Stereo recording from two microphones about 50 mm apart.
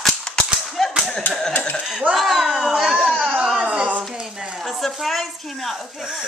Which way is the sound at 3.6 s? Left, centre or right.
Right.